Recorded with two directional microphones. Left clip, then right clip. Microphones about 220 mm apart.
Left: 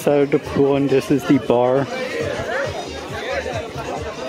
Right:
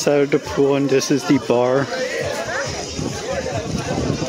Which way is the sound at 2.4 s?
45° left (ahead or behind).